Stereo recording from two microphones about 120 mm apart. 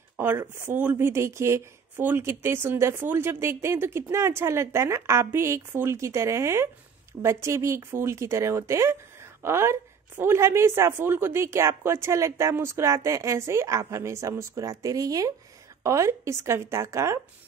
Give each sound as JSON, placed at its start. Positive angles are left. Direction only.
{"t": 0.2, "sound": "speech", "side_deg": -20}